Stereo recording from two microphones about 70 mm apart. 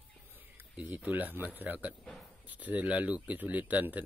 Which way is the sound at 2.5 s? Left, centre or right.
Right.